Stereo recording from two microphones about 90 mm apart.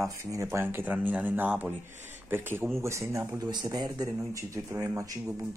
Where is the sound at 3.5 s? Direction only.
50° right (ahead or behind).